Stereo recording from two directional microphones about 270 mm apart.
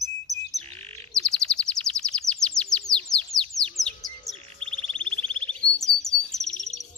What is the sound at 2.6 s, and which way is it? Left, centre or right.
Bird, centre.